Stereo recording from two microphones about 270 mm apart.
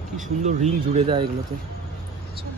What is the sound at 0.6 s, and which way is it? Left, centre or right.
Speech, right.